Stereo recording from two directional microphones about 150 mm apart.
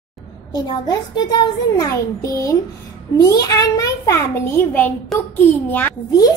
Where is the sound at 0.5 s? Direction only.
30° left (ahead or behind); by 5.9 s 15° left (ahead or behind).